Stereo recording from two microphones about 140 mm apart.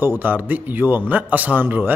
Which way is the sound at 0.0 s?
15° right (ahead or behind).